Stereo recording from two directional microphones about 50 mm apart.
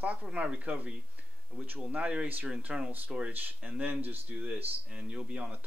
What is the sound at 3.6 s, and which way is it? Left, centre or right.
Speech, right.